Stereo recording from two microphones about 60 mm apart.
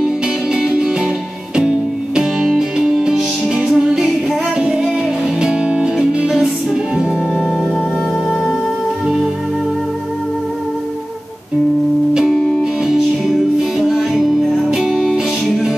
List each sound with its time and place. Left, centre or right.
0.6 s music: centre
2.1 s music: centre
12.8 s music: centre